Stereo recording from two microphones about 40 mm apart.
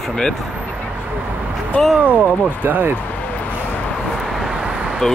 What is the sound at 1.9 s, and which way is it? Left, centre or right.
Speech, right.